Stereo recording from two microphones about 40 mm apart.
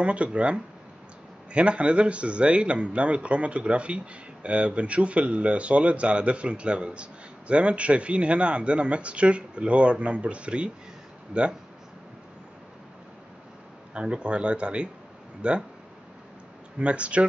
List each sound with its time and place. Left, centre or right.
0.0 s speech: right
13.9 s speech: right
16.7 s speech: right